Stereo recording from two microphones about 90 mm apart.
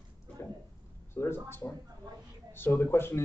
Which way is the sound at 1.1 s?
25° left (ahead or behind).